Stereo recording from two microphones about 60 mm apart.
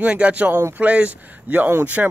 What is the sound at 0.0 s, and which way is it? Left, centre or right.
Speech, right.